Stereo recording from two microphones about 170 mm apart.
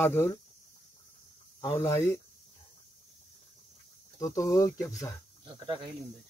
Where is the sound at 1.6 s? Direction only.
15° left (ahead or behind).